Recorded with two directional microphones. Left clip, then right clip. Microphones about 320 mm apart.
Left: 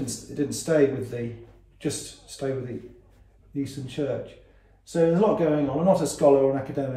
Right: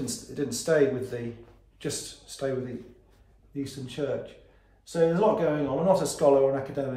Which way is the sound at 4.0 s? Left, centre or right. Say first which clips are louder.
Left 2 dB; centre.